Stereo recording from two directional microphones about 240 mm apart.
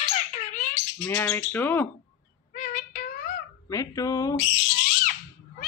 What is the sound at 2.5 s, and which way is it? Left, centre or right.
Child singing, left.